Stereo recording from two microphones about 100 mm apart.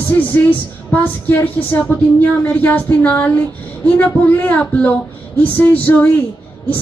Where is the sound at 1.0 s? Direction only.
20° left (ahead or behind).